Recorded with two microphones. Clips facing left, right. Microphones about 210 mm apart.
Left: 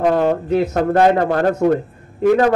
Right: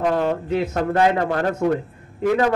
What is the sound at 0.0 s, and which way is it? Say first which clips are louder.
A man's voice: left 5 dB; 45° left (ahead or behind).